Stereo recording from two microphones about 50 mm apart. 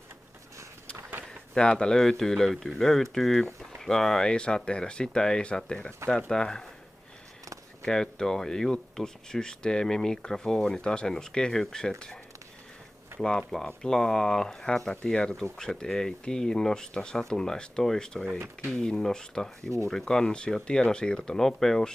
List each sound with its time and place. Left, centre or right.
1.5 s speech: centre
7.8 s speech: centre
13.2 s speech: centre